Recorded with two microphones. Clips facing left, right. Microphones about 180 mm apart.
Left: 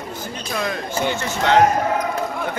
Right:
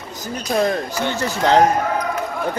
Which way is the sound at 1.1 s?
35° right (ahead or behind).